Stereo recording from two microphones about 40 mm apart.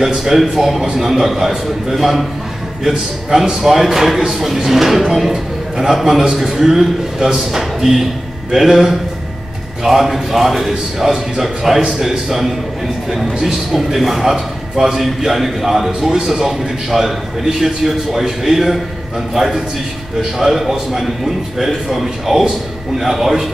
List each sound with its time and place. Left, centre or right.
0.0 s a man's voice: centre
16.3 s a man's voice: centre
17.5 s a man's voice: centre